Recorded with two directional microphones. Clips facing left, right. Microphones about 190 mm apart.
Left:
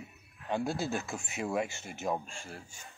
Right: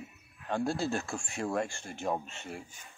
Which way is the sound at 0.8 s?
Centre (ahead or behind).